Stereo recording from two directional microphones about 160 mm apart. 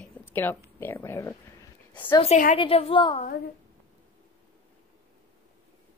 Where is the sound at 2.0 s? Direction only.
35° left (ahead or behind).